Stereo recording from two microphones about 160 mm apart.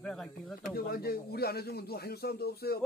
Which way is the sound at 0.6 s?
75° left (ahead or behind).